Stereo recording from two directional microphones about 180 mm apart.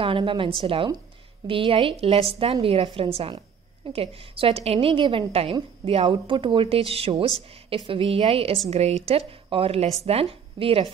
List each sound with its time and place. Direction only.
0.0 s a woman's voice: 30° right (ahead or behind)